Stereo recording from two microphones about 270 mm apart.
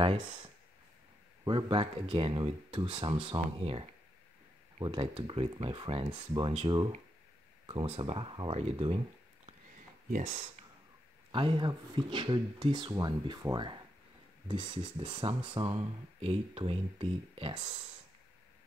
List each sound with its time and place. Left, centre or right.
1.4 s speech: centre
11.3 s speech: centre